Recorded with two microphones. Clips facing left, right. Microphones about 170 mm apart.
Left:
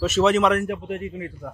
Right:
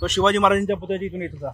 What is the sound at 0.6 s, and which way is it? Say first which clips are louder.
Speech: right 5 dB; 25° right (ahead or behind).